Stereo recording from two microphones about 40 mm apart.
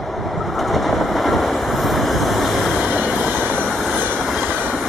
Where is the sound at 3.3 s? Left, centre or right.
Right.